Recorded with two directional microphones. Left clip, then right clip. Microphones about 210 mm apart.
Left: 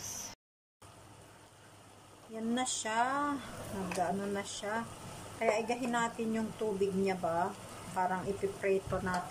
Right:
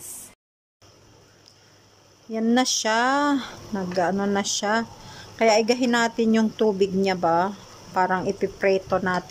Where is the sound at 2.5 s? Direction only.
45° right (ahead or behind).